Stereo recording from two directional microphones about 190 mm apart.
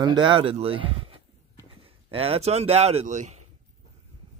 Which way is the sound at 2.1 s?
30° right (ahead or behind).